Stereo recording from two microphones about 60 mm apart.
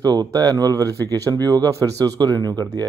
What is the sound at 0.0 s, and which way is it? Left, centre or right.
Speech, right.